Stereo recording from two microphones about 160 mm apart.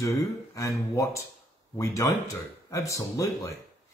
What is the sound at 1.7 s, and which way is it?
Speech, 20° left (ahead or behind).